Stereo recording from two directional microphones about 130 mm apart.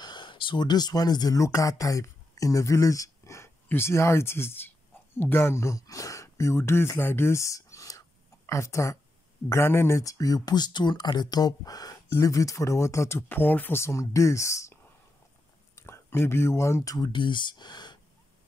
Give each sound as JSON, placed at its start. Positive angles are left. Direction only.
{"t": 0.0, "sound": "speech", "side_deg": 35}